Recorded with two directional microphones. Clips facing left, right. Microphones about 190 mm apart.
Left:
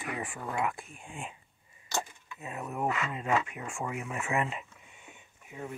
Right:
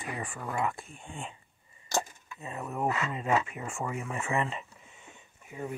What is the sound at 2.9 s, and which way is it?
Speech, 35° right (ahead or behind).